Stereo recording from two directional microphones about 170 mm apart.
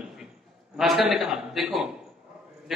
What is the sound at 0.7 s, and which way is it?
A man's voice, centre (ahead or behind).